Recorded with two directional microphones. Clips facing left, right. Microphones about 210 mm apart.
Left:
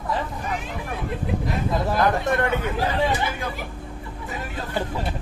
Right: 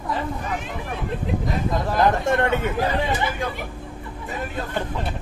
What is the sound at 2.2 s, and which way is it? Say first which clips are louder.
Speech: right 2 dB; 25° right (ahead or behind).